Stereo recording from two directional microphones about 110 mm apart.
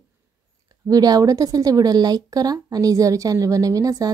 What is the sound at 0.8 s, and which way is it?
Speech, 35° right (ahead or behind).